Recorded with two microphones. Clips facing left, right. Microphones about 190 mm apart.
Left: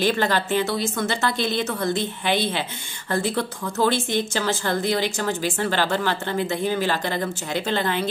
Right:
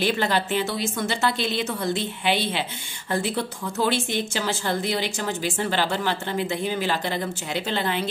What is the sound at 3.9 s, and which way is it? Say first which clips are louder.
Speech: left 2 dB; 10° right (ahead or behind).